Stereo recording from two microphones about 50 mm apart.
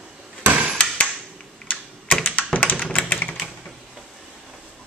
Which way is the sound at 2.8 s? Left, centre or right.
Left.